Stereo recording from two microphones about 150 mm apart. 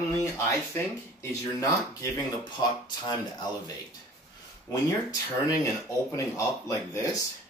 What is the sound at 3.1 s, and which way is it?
Speech, 25° left (ahead or behind).